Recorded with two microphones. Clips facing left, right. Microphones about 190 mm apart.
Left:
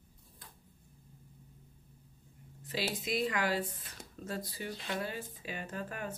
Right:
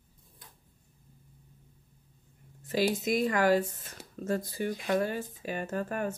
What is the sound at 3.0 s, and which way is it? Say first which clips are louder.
Speech: right 5 dB; 50° right (ahead or behind).